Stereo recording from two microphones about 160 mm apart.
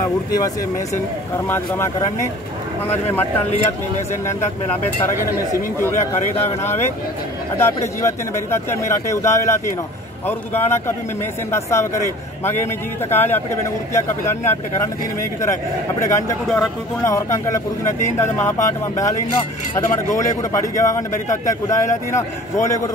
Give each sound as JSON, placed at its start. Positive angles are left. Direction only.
{"t": 5.5, "sound": "speech", "side_deg": 15}
{"t": 13.1, "sound": "speech", "side_deg": 15}
{"t": 16.1, "sound": "speech", "side_deg": 20}